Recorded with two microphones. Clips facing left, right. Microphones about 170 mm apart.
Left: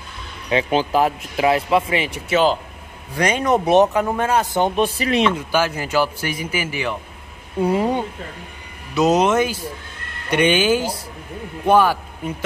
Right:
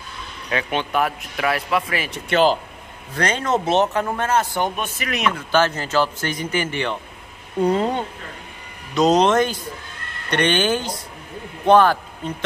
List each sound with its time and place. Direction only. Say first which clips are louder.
0.5 s speech: left 5 dB; 30° left (ahead or behind)
2.0 s speech: even; 5° left (ahead or behind)
3.2 s speech: left 3 dB; 15° left (ahead or behind)
5.5 s speech: right 1 dB; 10° left (ahead or behind)